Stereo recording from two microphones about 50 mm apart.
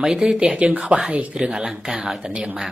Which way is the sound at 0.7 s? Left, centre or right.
Right.